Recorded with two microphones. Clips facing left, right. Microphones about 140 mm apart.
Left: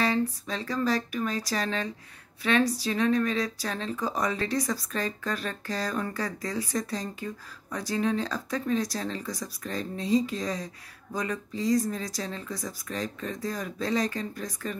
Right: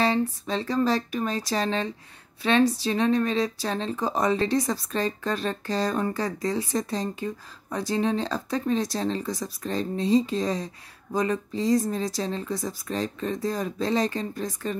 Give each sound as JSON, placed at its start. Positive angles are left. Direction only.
{"t": 0.0, "sound": "speech", "side_deg": -25}